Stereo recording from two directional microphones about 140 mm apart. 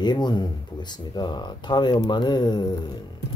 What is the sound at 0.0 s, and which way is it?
Speech, 30° left (ahead or behind).